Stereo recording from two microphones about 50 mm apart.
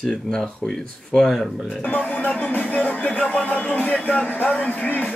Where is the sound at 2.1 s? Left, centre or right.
Left.